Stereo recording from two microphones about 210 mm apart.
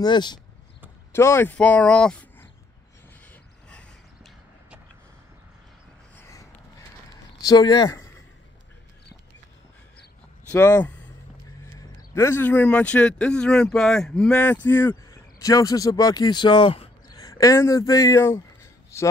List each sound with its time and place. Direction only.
0.0 s speech: 20° left (ahead or behind); by 2.4 s 5° left (ahead or behind)
3.6 s a sound: 5° left (ahead or behind)
7.4 s speech: 20° left (ahead or behind)
10.5 s speech: 10° left (ahead or behind)
12.1 s speech: 10° left (ahead or behind)